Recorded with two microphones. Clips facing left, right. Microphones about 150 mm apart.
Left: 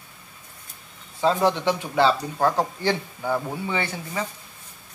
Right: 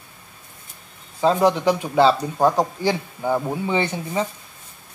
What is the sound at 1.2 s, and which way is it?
Speech, 15° right (ahead or behind).